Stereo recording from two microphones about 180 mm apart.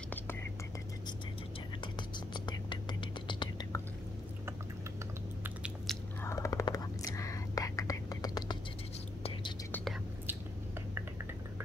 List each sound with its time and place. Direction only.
1.8 s whispering: 25° left (ahead or behind)
5.4 s biting: 5° right (ahead or behind)
6.2 s whispering: 15° left (ahead or behind)